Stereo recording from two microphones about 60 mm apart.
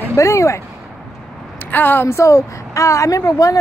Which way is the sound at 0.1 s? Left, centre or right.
Left.